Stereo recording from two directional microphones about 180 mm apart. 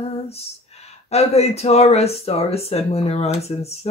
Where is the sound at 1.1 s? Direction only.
35° left (ahead or behind).